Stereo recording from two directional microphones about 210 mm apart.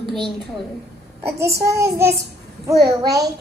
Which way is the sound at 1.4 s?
50° right (ahead or behind).